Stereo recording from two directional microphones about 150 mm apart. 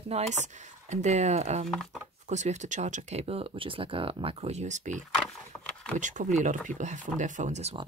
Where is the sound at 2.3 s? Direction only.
50° right (ahead or behind).